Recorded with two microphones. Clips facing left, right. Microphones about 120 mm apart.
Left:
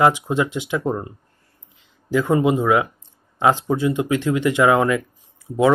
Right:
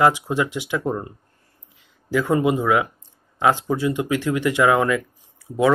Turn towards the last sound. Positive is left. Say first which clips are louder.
# left 2 dB
turn(degrees=25)  # may be behind; listen again after turning